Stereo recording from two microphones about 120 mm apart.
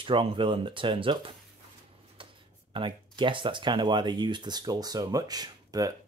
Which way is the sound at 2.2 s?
45° right (ahead or behind).